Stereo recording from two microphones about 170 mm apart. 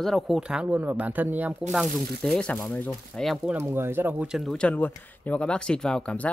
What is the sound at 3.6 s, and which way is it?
Speech, 15° right (ahead or behind).